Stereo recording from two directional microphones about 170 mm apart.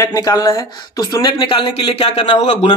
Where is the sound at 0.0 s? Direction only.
20° left (ahead or behind).